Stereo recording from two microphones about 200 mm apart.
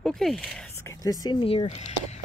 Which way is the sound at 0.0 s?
Centre (ahead or behind).